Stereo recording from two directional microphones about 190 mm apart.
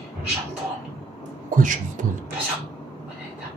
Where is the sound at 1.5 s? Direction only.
45° right (ahead or behind).